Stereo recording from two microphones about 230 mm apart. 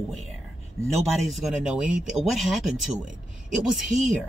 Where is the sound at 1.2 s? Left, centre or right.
Centre.